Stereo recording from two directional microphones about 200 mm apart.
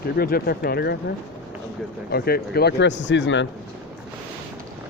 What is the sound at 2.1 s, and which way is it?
A man's voice, 50° left (ahead or behind).